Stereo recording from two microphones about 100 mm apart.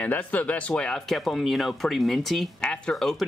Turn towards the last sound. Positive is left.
turn(degrees=5)  # may be behind; listen again after turning